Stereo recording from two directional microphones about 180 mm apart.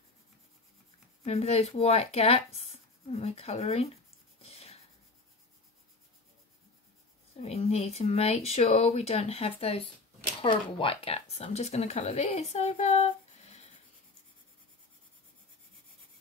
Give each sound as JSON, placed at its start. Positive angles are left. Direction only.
{"t": 1.2, "sound": "speech", "side_deg": 35}
{"t": 4.4, "sound": "writing", "side_deg": 35}
{"t": 7.4, "sound": "speech", "side_deg": 35}